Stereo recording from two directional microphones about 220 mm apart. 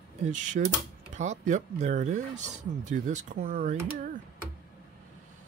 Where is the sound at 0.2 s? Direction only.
35° right (ahead or behind).